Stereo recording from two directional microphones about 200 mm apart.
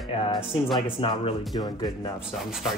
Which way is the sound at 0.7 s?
20° left (ahead or behind).